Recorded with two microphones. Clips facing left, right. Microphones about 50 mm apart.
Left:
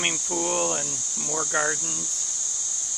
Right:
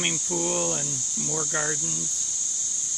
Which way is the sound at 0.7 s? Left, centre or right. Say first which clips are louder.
Left 2 dB; left.